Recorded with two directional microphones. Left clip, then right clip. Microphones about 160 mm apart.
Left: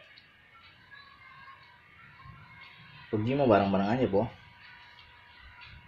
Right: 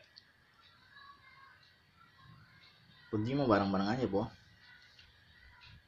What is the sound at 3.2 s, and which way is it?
Speech, 70° right (ahead or behind).